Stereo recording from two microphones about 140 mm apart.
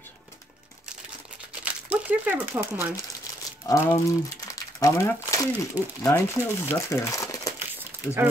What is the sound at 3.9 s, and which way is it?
Speech, 25° left (ahead or behind).